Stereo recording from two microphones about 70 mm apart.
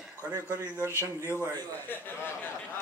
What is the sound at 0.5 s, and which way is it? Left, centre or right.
Speech, left.